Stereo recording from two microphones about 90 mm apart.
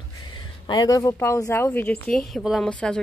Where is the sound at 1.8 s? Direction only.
10° left (ahead or behind).